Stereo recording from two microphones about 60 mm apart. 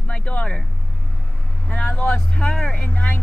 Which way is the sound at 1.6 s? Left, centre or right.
Centre.